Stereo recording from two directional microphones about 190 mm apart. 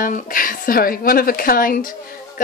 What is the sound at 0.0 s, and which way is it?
A woman's voice, 45° left (ahead or behind).